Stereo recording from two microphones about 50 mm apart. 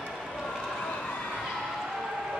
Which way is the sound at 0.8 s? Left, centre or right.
Left.